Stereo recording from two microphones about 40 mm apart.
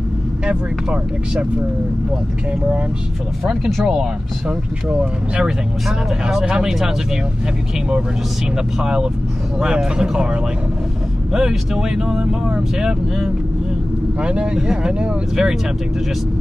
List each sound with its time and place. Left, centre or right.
3.8 s speech: right
9.8 s speech: centre
11.3 s speech: centre
14.2 s speech: right